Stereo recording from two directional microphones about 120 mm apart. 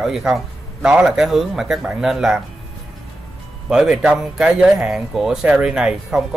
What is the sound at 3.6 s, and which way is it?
Speech, 5° right (ahead or behind).